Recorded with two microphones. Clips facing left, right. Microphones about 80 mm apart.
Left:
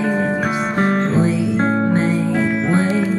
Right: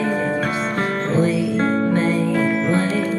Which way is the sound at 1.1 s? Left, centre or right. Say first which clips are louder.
Left 1 dB; left.